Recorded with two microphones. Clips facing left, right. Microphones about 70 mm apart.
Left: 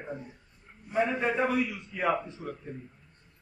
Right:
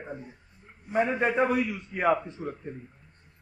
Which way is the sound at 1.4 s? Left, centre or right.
Right.